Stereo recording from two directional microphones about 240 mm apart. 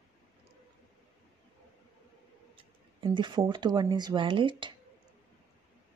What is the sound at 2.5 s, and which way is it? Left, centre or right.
Speech, centre.